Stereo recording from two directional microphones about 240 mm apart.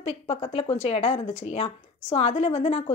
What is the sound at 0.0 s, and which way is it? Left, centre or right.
A woman's voice, left.